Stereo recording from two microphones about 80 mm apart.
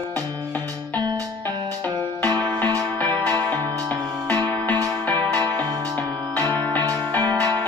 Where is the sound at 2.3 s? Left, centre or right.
Centre.